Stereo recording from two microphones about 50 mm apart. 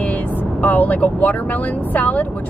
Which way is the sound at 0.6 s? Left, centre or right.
Left.